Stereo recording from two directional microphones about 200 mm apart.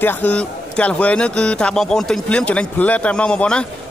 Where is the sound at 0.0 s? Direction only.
10° left (ahead or behind).